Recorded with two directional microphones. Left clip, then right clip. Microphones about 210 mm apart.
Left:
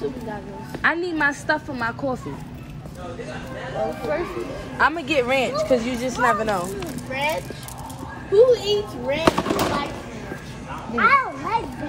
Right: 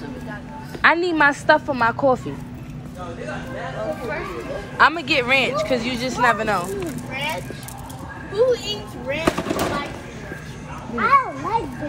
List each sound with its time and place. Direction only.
0.8 s a woman's voice: 5° left (ahead or behind)
4.7 s a woman's voice: 10° left (ahead or behind)
8.4 s a child's voice: 50° left (ahead or behind)
9.3 s speech: centre (ahead or behind)
11.0 s a child's voice: centre (ahead or behind)